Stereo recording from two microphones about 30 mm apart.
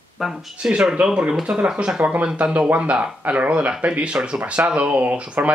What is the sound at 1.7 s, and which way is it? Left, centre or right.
Speech, right.